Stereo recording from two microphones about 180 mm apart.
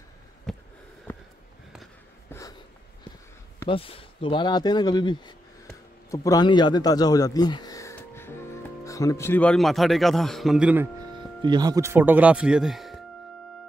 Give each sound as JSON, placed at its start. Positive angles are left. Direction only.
{"t": 0.5, "sound": "a sound", "side_deg": 0}
{"t": 3.6, "sound": "speech", "side_deg": 30}
{"t": 11.4, "sound": "speech", "side_deg": -25}